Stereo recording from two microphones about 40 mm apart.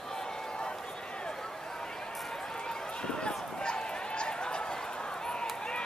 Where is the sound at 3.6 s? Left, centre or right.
Left.